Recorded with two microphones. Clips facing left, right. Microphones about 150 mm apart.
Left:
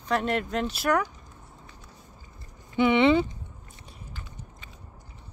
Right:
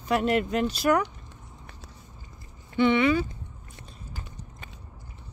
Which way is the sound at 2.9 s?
25° left (ahead or behind).